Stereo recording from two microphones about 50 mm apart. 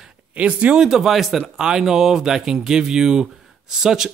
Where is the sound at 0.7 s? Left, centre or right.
Centre.